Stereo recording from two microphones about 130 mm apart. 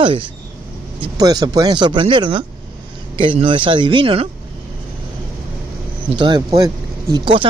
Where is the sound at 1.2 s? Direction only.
30° right (ahead or behind).